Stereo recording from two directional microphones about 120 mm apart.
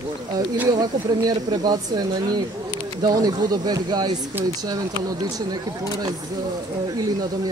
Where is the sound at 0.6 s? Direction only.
35° right (ahead or behind).